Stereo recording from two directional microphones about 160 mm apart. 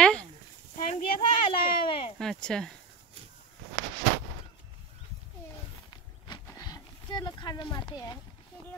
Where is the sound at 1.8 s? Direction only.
35° left (ahead or behind).